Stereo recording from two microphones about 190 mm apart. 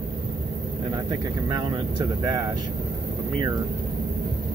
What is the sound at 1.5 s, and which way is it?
Speech, 20° right (ahead or behind).